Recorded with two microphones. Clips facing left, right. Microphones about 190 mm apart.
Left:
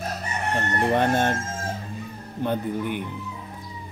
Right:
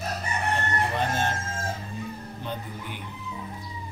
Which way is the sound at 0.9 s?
55° left (ahead or behind).